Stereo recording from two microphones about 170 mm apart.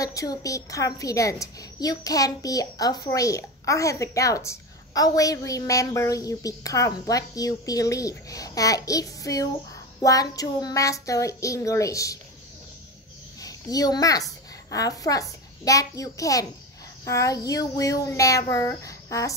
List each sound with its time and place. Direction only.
0.0 s a woman's voice: 20° left (ahead or behind)
13.4 s a child's voice: 20° left (ahead or behind)